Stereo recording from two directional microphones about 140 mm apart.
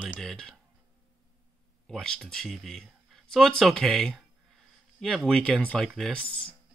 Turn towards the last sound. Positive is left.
turn(degrees=5)  # may be behind; listen again after turning